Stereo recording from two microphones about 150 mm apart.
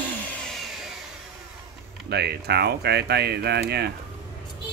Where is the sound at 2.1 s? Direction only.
90° right.